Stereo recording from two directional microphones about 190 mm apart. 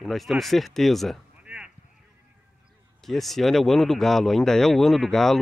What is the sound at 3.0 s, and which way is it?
Speech, centre (ahead or behind).